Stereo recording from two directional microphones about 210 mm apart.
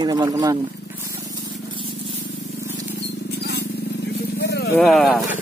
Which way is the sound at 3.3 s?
50° left (ahead or behind).